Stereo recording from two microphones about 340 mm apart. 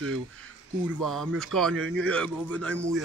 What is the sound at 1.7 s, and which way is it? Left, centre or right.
Speech, right.